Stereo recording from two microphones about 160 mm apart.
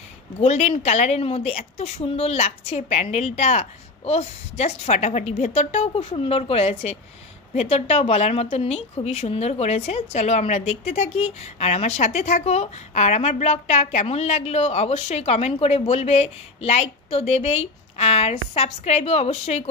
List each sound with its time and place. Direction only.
0.4 s a woman's voice: 45° left (ahead or behind)